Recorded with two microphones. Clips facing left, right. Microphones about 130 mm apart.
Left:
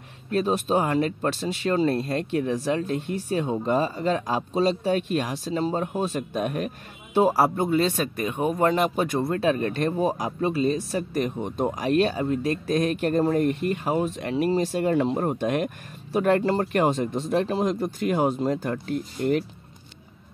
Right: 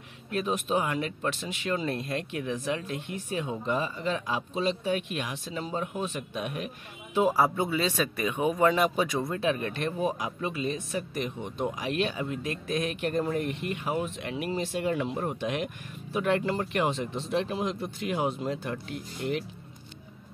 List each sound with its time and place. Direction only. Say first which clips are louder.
0.3 s speech: left 5 dB; 35° left (ahead or behind); by 9.2 s 50° left (ahead or behind)
9.4 s speech: left 6 dB; 40° left (ahead or behind)